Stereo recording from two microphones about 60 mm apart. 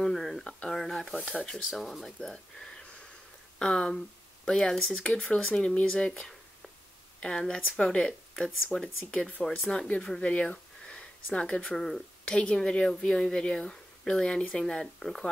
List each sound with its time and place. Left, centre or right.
0.0 s a sound: centre
1.2 s speech: centre
1.7 s speech: centre; by 10.1 s left
10.2 s a sound: left
11.3 s speech: centre
11.7 s speech: centre
12.3 s speech: centre